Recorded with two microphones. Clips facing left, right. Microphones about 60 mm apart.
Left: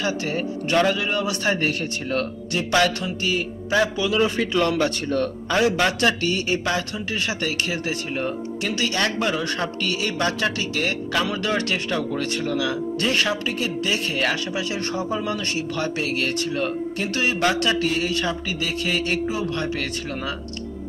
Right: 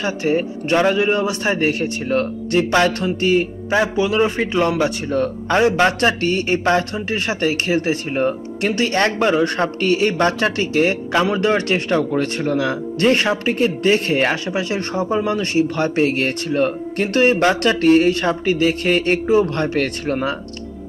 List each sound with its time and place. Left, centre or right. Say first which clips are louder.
0.0 s a man's voice: right 5 dB; right
2.5 s speech: right 4 dB; right
3.7 s a man's voice: right 3 dB; right; by 5.3 s centre
5.5 s speech: right 5 dB; right